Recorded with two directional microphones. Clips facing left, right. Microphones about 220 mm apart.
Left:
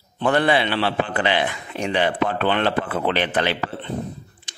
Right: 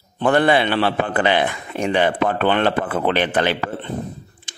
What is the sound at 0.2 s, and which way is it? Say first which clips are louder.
A man's voice: right 3 dB; 50° right (ahead or behind).